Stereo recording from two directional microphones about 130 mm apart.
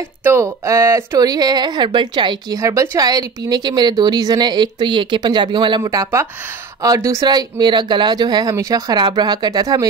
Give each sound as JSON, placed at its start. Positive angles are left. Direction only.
{"t": 0.2, "sound": "speech", "side_deg": -20}
{"t": 2.6, "sound": "speech", "side_deg": -25}